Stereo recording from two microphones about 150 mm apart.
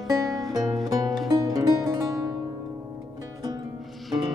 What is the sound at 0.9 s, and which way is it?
Music, 25° right (ahead or behind).